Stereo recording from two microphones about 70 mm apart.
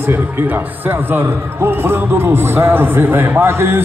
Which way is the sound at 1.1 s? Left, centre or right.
Right.